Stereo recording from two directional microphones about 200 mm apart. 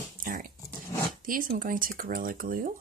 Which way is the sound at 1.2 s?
45° right (ahead or behind).